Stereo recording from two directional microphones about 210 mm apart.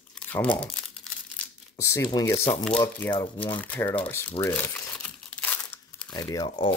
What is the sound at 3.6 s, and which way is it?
Crumpling, 10° left (ahead or behind).